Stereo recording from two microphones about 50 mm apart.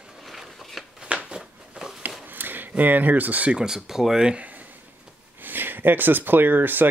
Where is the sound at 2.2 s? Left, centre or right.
Right.